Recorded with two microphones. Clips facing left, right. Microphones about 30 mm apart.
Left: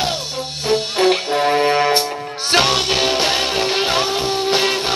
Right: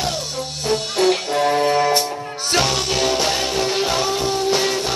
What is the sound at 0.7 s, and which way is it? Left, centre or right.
Music, left.